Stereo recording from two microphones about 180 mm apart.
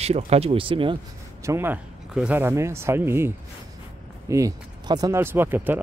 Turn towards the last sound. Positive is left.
turn(degrees=-10)  # may be behind; listen again after turning